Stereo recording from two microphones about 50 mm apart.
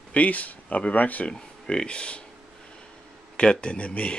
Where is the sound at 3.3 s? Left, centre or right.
Centre.